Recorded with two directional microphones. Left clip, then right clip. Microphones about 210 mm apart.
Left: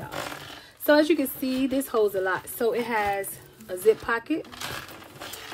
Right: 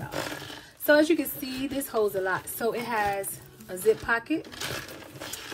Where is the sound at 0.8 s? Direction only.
50° left (ahead or behind).